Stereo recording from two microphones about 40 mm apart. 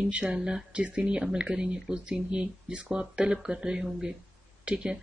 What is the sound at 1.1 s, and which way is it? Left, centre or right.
Speech, right.